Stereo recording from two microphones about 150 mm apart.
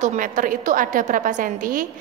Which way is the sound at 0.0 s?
60° right (ahead or behind).